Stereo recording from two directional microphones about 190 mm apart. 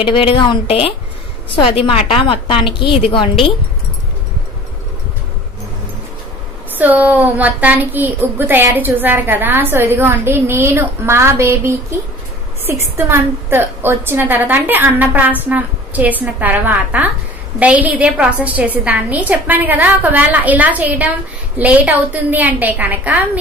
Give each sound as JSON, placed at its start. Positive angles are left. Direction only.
{"t": 0.0, "sound": "a woman's voice", "side_deg": 25}
{"t": 6.8, "sound": "a woman's voice", "side_deg": -10}